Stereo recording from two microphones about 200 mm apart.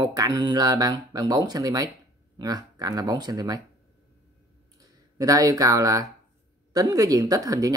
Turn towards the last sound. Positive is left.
turn(degrees=-15)  # may be behind; listen again after turning